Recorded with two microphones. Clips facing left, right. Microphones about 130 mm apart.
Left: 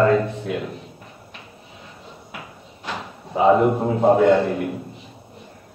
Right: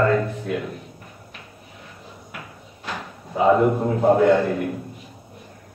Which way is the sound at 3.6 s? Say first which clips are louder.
Left 1 dB; 20° left (ahead or behind).